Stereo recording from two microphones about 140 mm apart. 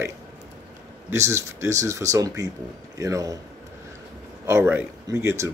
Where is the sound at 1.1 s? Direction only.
20° right (ahead or behind).